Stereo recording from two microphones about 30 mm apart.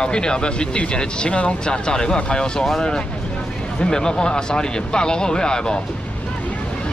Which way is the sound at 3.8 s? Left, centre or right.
Left.